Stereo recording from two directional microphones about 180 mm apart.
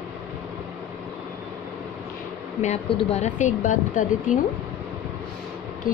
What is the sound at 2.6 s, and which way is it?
Speech, 35° left (ahead or behind).